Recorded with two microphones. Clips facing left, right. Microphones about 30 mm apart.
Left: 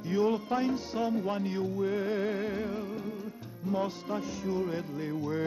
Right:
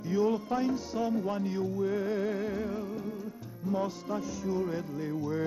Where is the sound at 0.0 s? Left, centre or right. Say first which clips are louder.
Even; left.